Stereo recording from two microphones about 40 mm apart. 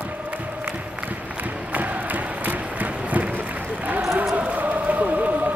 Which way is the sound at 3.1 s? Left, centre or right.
Right.